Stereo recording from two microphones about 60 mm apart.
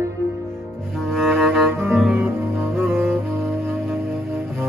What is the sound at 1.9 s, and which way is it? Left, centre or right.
Music, centre.